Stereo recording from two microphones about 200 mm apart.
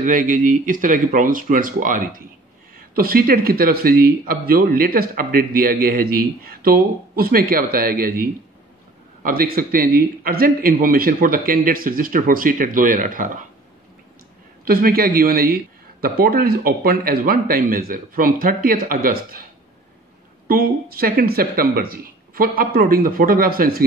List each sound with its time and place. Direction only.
0.0 s speech: 40° right (ahead or behind)
14.6 s speech: 45° right (ahead or behind)
20.4 s speech: 50° right (ahead or behind)